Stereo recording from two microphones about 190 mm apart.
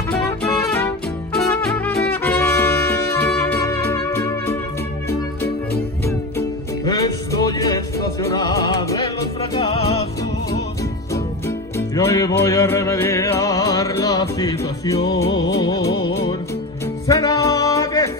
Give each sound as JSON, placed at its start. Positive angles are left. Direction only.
{"t": 0.1, "sound": "music", "side_deg": 10}
{"t": 6.0, "sound": "music", "side_deg": 20}
{"t": 9.6, "sound": "music", "side_deg": 30}
{"t": 11.4, "sound": "music", "side_deg": 15}
{"t": 17.1, "sound": "music", "side_deg": 20}